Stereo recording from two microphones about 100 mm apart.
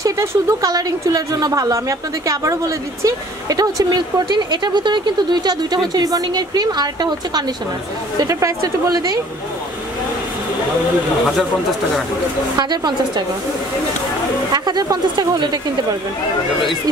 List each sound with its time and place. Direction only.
0.0 s a woman's voice: 30° right (ahead or behind)
8.2 s a woman's voice: 35° right (ahead or behind)
12.5 s speech: 45° right (ahead or behind)
14.5 s speech: 45° right (ahead or behind)